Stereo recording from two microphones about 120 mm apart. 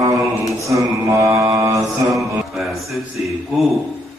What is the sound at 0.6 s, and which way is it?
Mantra, 25° right (ahead or behind).